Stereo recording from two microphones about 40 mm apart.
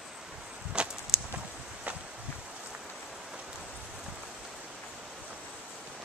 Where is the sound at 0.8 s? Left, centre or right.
Right.